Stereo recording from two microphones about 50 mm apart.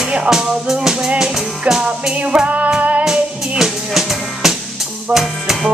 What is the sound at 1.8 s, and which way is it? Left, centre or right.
Music, centre.